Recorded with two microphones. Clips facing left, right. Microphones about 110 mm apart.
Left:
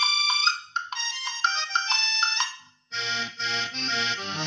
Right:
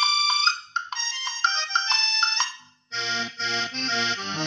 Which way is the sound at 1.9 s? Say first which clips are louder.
Right 1 dB; 35° right (ahead or behind).